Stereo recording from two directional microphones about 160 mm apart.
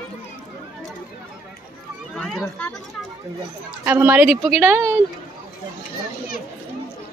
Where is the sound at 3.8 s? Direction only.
15° right (ahead or behind).